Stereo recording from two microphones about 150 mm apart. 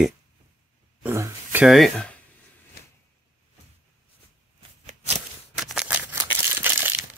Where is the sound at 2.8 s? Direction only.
90° left.